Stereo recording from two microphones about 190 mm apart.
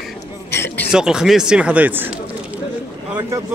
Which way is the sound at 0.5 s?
15° left (ahead or behind).